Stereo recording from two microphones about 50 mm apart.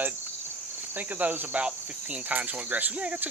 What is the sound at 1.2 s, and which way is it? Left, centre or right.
Speech, right.